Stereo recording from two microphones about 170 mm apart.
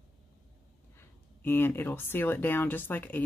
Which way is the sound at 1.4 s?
10° left (ahead or behind).